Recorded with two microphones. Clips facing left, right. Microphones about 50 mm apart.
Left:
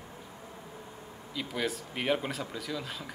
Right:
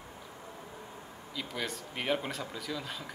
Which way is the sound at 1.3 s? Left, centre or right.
Centre.